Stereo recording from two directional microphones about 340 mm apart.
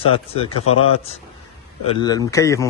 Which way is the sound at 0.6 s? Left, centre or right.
Left.